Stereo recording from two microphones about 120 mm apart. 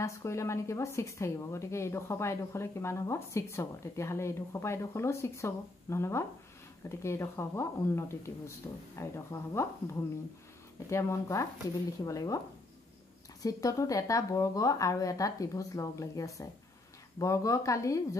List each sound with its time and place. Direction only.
0.0 s a woman's voice: 25° left (ahead or behind)
10.9 s a woman's voice: 25° left (ahead or behind)
13.4 s a woman's voice: 30° left (ahead or behind)